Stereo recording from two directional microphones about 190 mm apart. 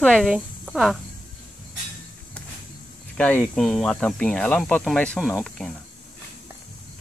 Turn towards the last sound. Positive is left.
turn(degrees=0)  # may be behind; listen again after turning